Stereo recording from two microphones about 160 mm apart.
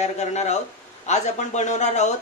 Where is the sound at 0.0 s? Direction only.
45° left (ahead or behind).